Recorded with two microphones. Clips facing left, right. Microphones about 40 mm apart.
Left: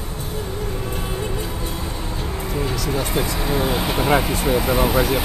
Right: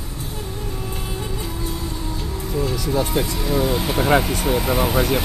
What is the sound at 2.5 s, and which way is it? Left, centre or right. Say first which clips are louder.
Vehicle: right 2 dB; left.